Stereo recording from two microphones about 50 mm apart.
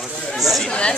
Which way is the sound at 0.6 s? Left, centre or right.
Left.